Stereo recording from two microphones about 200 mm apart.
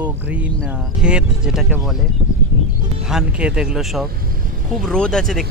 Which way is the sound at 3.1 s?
5° right (ahead or behind).